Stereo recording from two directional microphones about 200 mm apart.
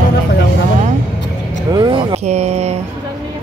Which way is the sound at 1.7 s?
25° right (ahead or behind).